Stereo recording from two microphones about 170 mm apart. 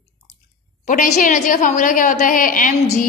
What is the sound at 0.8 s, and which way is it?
A woman's voice, 50° left (ahead or behind).